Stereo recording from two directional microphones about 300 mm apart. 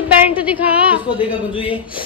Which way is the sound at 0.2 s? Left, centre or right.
Centre.